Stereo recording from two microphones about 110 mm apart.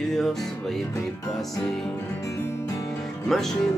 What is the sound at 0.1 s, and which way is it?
Music, 5° left (ahead or behind).